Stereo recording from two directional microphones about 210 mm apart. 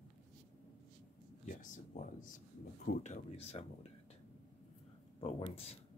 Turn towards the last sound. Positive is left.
turn(degrees=30)  # may be behind; listen again after turning